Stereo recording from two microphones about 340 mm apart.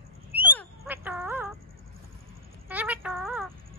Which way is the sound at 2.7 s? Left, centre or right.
Centre.